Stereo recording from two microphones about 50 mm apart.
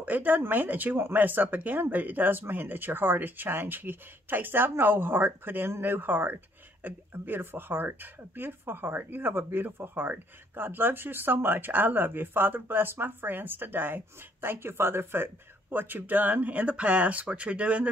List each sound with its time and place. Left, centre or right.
0.0 s speech: right